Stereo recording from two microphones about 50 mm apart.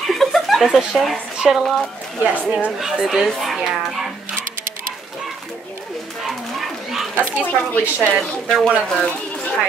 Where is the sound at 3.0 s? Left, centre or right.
Centre.